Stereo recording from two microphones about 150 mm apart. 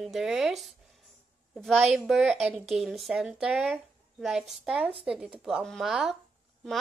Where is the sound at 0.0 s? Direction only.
Centre (ahead or behind).